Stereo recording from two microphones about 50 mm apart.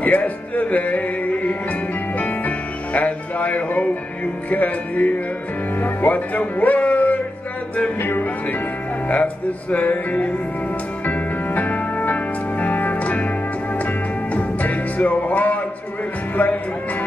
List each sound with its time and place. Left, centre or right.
0.0 s music: left
5.8 s speech: left
8.0 s music: left
14.3 s music: left